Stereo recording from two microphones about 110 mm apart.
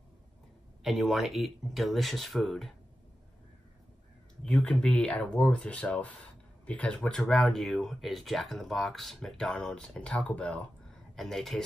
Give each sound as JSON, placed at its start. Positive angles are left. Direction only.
{"t": 0.8, "sound": "speech", "side_deg": -5}
{"t": 4.5, "sound": "speech", "side_deg": 10}